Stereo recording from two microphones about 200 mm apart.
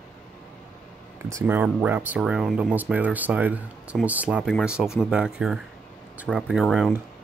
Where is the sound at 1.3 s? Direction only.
10° right (ahead or behind).